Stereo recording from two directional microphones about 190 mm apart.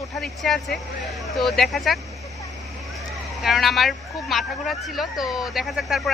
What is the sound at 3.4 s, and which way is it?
Speech, centre (ahead or behind).